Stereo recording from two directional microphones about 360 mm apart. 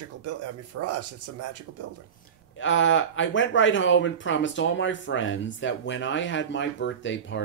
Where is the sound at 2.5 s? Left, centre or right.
Left.